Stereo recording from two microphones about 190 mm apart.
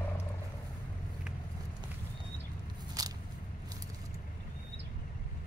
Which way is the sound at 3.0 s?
20° right (ahead or behind).